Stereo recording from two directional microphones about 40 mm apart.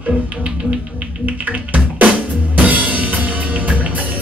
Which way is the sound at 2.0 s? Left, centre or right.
Right.